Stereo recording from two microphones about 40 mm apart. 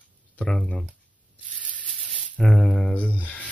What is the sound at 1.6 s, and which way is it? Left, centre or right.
Sanding, left.